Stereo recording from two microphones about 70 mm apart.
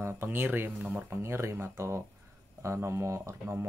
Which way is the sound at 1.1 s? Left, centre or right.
Right.